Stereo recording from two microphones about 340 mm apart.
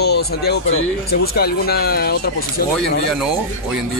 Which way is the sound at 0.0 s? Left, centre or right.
Left.